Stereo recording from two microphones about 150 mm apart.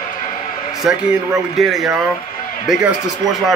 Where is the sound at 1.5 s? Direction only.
Centre (ahead or behind).